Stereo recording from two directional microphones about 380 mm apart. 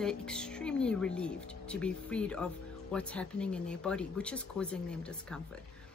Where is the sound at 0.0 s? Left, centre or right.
Centre.